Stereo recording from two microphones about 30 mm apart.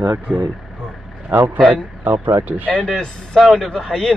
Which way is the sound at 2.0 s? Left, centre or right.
Right.